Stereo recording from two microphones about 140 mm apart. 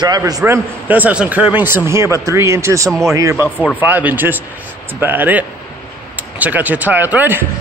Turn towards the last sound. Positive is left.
turn(degrees=-15)  # may be behind; listen again after turning